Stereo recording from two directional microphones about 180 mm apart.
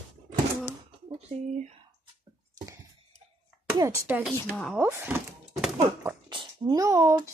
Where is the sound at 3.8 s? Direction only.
10° right (ahead or behind).